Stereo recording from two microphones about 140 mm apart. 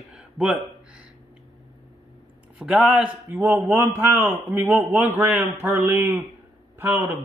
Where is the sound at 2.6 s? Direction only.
5° right (ahead or behind).